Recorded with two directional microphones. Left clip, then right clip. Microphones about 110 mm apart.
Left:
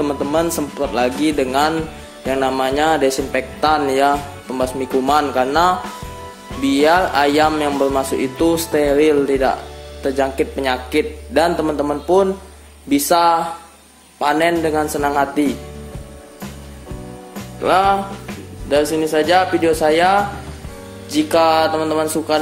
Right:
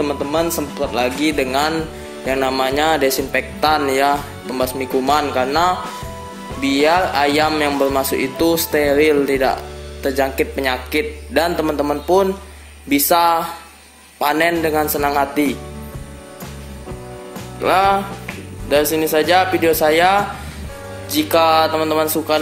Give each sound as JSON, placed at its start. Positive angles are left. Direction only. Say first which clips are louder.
{"t": 0.0, "sound": "speech", "louder": "left 1 dB", "side_deg": 35}
{"t": 1.2, "sound": "speech", "louder": "left 1 dB", "side_deg": 15}
{"t": 17.6, "sound": "speech", "louder": "even", "side_deg": 0}